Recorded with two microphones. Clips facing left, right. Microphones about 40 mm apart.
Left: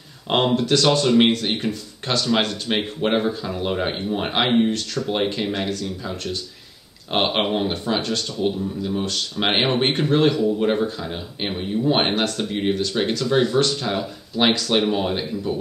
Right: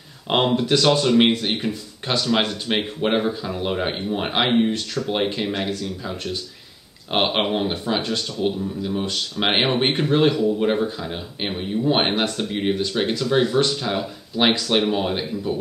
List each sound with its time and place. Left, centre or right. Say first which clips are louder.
0.3 s speech: even; centre
7.1 s speech: even; centre
8.0 s speech: even; centre
8.4 s speech: left 1 dB; centre